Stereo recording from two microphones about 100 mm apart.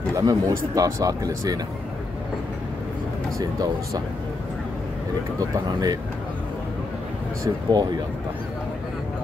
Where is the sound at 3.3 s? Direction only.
35° right (ahead or behind).